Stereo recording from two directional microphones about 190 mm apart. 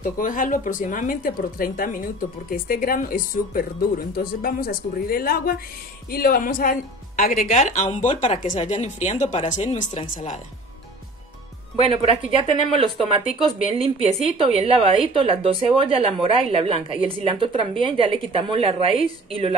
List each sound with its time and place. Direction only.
0.0 s speech: 45° left (ahead or behind)
11.7 s a woman's voice: 30° right (ahead or behind)